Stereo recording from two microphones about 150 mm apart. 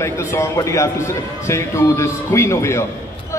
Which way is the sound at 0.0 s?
20° left (ahead or behind).